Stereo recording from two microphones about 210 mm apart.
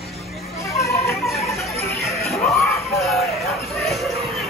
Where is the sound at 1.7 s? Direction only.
15° left (ahead or behind).